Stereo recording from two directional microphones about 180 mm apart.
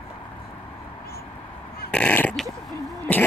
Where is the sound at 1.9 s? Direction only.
10° left (ahead or behind).